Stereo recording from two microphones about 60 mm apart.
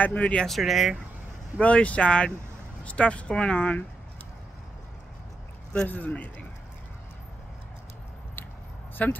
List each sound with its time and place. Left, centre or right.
0.0 s speech: left
0.5 s speech: centre
1.6 s speech: left
5.9 s speech: left
8.9 s speech: left